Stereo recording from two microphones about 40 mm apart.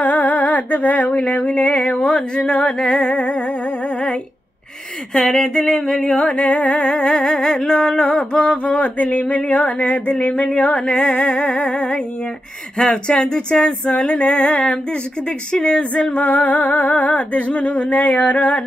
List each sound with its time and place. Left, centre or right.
0.0 s humming: left
2.3 s music: left
5.1 s a sound: centre
6.1 s humming: left
7.5 s music: centre
8.1 s humming: left
10.1 s humming: left
15.5 s music: left
16.3 s humming: left